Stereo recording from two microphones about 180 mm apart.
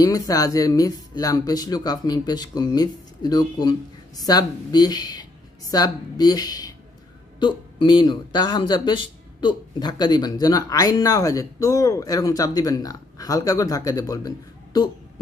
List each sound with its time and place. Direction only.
0.0 s speech: 20° left (ahead or behind)